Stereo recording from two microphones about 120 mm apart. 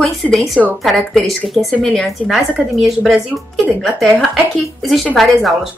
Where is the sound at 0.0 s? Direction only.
Centre (ahead or behind).